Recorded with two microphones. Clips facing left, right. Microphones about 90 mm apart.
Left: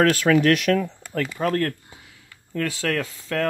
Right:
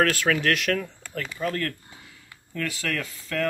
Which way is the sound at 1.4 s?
55° left (ahead or behind).